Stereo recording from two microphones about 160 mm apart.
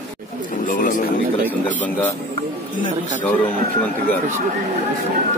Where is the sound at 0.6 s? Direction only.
55° left (ahead or behind).